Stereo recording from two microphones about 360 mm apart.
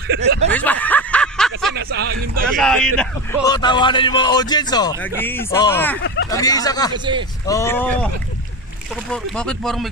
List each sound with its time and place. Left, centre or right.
0.1 s speech: right
0.5 s snicker: centre
1.8 s speech: right
2.4 s a man's voice: centre
6.9 s speech: centre
7.4 s a man's voice: centre
9.1 s speech: centre